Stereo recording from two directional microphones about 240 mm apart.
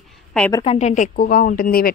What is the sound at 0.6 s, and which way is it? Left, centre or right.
Speech, left.